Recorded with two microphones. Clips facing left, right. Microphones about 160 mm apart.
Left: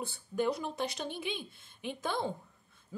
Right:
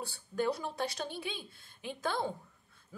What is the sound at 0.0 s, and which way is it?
A woman's voice, 20° left (ahead or behind).